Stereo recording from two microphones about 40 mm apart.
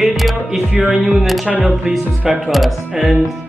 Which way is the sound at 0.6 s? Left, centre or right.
Right.